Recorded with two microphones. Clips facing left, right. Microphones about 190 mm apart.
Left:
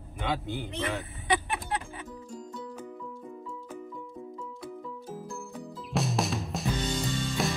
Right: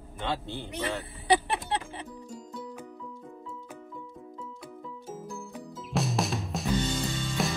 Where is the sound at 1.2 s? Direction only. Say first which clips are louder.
Right 5 dB; 35° right (ahead or behind).